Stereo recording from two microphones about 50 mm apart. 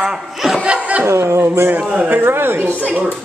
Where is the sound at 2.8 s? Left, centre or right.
Right.